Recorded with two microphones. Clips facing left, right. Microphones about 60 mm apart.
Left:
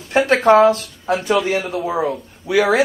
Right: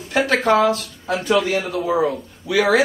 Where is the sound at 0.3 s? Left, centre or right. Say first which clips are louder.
Left 5 dB; left.